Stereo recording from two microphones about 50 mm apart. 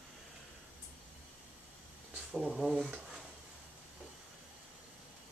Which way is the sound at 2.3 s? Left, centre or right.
Centre.